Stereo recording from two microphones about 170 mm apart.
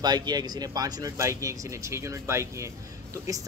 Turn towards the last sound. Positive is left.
turn(degrees=-20)  # may be behind; listen again after turning